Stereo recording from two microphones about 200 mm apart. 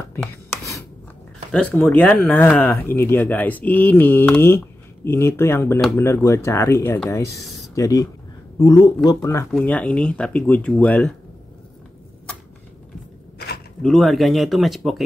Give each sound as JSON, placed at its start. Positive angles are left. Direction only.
{"t": 0.1, "sound": "writing", "side_deg": 10}
{"t": 1.5, "sound": "speech", "side_deg": 5}
{"t": 9.5, "sound": "speech", "side_deg": 5}
{"t": 13.8, "sound": "speech", "side_deg": 0}